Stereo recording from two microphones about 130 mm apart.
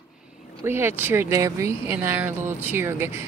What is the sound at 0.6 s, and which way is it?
Speech, 15° right (ahead or behind).